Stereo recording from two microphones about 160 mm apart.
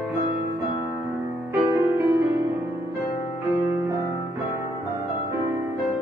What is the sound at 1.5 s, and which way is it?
Music, 15° right (ahead or behind).